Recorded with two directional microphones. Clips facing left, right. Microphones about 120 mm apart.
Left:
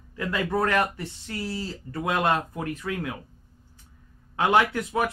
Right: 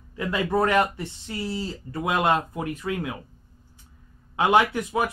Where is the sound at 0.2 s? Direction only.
20° right (ahead or behind).